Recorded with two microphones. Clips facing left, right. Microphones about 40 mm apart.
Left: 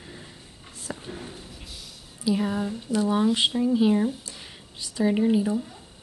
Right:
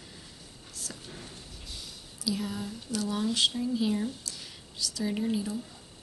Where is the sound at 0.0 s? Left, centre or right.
Left.